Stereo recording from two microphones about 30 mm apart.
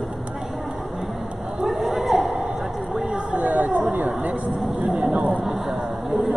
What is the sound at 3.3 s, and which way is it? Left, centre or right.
Chatter, right.